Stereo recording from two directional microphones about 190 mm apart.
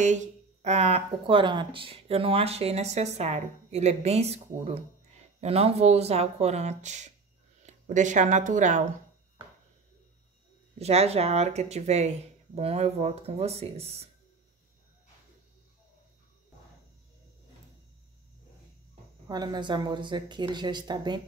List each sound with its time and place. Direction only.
0.0 s speech: 40° right (ahead or behind)
10.8 s speech: 35° right (ahead or behind)
19.2 s speech: 20° right (ahead or behind)